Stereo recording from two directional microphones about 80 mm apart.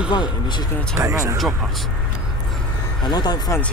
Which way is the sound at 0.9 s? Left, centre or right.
Right.